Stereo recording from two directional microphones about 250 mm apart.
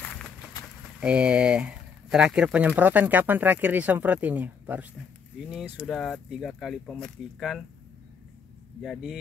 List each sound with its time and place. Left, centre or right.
1.0 s speech: centre
8.8 s speech: centre